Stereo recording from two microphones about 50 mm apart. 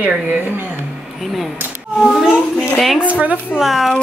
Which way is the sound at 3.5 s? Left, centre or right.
Centre.